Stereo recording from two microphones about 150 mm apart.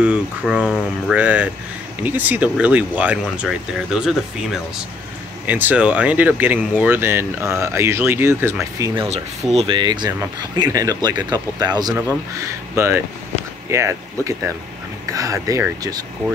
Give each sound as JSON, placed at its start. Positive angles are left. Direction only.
{"t": 0.0, "sound": "speech", "side_deg": -5}
{"t": 9.6, "sound": "speech", "side_deg": -30}